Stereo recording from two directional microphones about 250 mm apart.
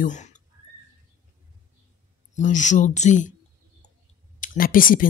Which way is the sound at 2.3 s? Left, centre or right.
Left.